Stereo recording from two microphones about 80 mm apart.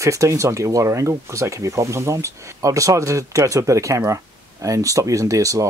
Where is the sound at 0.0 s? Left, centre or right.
Right.